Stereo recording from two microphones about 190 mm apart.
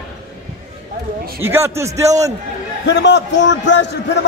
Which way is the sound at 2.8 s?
65° left (ahead or behind).